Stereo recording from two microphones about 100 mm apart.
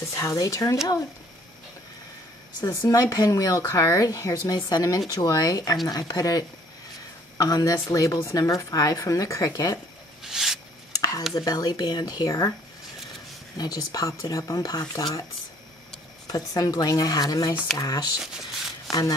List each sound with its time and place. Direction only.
0.1 s speech: 35° left (ahead or behind)
2.6 s speech: 40° left (ahead or behind)
10.2 s a sound: 5° right (ahead or behind)
11.0 s a sound: 35° left (ahead or behind)
11.3 s speech: 40° left (ahead or behind)
13.6 s speech: 40° left (ahead or behind)
16.3 s speech: 40° left (ahead or behind)